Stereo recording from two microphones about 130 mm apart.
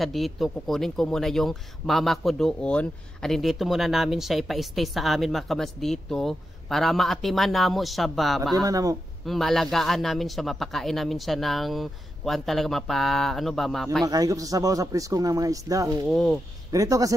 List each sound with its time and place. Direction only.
0.0 s a man's voice: centre (ahead or behind)
8.5 s speech: 25° right (ahead or behind)
9.2 s a man's voice: centre (ahead or behind)
14.0 s speech: 30° right (ahead or behind)
16.1 s a man's voice: 5° left (ahead or behind)
16.7 s speech: 25° right (ahead or behind)